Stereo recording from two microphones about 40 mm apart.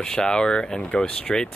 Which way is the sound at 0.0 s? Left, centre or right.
Centre.